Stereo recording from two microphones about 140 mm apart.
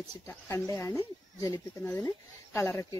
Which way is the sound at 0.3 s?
15° left (ahead or behind).